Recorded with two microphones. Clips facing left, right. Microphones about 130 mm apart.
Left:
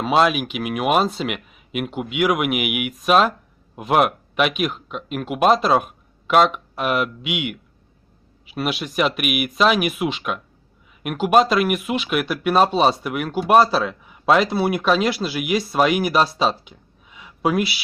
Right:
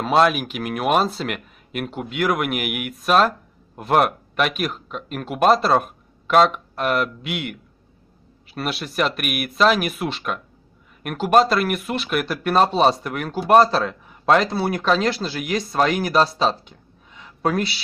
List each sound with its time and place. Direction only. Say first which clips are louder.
0.0 s speech: even; 5° left (ahead or behind)